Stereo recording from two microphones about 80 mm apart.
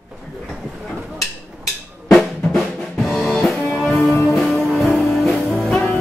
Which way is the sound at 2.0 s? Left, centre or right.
Centre.